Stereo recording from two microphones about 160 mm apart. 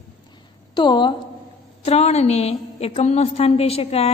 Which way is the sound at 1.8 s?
40° left (ahead or behind).